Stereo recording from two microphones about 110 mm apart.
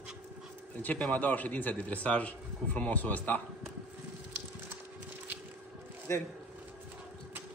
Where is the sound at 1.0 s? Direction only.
15° left (ahead or behind).